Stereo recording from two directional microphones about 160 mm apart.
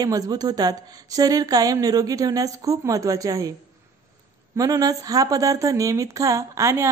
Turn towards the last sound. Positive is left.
turn(degrees=-20)  # may be behind; listen again after turning